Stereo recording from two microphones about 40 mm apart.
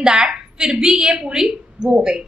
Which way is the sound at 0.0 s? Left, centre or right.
Centre.